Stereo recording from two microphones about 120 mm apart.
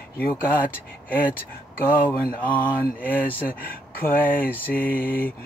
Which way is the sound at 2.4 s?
15° left (ahead or behind).